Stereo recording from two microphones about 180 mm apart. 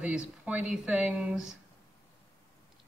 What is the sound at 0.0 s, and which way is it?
Speech, 5° right (ahead or behind).